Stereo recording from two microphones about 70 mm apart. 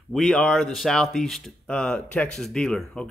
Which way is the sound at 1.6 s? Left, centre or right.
Centre.